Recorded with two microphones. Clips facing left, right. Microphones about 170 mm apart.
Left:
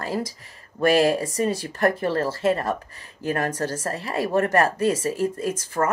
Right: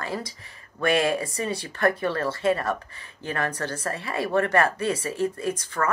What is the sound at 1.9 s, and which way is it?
A woman's voice, 30° left (ahead or behind).